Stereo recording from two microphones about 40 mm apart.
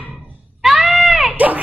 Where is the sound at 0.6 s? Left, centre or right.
Centre.